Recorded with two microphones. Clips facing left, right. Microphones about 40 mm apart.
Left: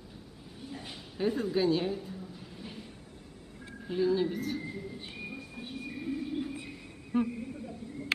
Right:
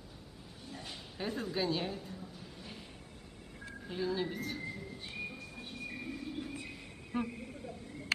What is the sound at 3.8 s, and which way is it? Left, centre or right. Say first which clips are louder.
Speech: left 7 dB; centre.